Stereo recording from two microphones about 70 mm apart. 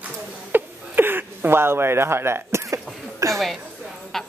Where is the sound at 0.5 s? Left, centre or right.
Right.